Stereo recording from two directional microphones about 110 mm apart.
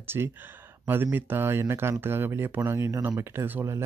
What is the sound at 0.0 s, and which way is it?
Speech, 20° right (ahead or behind).